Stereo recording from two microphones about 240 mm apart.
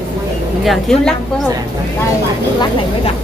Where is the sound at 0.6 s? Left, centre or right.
Centre.